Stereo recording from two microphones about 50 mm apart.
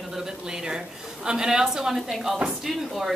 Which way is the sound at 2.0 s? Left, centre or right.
Centre.